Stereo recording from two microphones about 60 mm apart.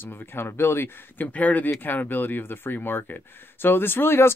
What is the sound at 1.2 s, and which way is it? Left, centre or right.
Speech, left.